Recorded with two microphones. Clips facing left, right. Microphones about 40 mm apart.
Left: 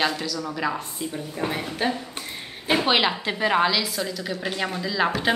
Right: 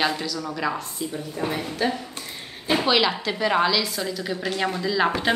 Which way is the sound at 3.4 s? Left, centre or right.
Centre.